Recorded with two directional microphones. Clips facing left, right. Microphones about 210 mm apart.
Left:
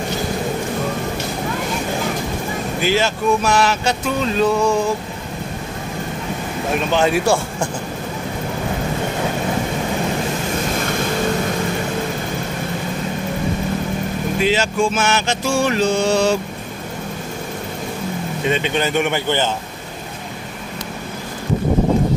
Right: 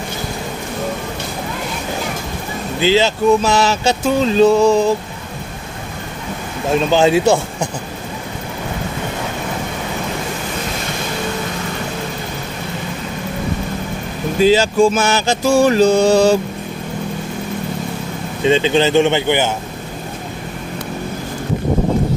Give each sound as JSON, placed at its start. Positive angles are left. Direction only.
{"t": 2.8, "sound": "speech", "side_deg": -25}
{"t": 6.9, "sound": "speech", "side_deg": -25}
{"t": 14.4, "sound": "mantra", "side_deg": -35}
{"t": 18.4, "sound": "speech", "side_deg": -30}